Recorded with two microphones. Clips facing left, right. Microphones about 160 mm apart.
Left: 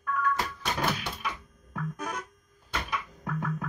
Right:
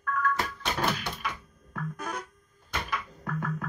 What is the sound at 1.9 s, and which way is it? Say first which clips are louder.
Music: even; 15° left (ahead or behind).